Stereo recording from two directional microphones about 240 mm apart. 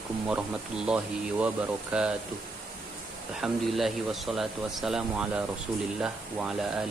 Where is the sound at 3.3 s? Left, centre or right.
Centre.